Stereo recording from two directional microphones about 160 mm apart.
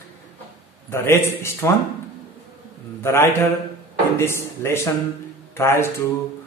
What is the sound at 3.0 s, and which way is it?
A man's voice, 15° left (ahead or behind).